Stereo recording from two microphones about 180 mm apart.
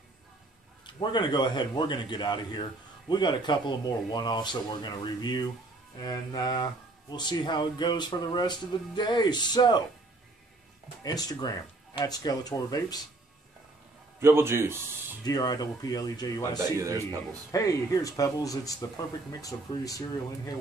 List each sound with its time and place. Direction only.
0.8 s speech: 25° left (ahead or behind)
11.1 s speech: 20° left (ahead or behind)
14.2 s speech: 15° right (ahead or behind)
15.2 s speech: 20° left (ahead or behind)
16.5 s speech: 15° right (ahead or behind)
17.5 s speech: 20° left (ahead or behind)